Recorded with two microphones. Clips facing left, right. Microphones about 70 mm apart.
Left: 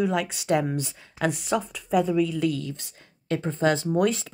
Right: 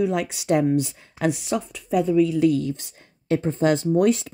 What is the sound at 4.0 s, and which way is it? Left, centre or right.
Speech, centre.